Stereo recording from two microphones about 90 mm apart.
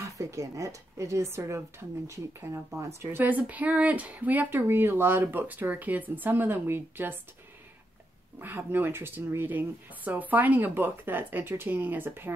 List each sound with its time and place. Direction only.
0.0 s speech: 35° right (ahead or behind)
8.4 s speech: 20° right (ahead or behind)